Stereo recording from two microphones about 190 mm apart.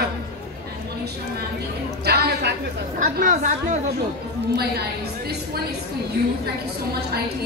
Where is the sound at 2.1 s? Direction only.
55° right (ahead or behind).